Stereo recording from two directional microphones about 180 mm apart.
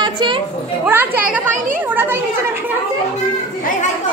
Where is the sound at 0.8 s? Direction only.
10° right (ahead or behind).